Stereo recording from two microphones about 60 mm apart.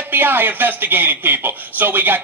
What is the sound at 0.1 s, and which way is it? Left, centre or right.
Speech, right.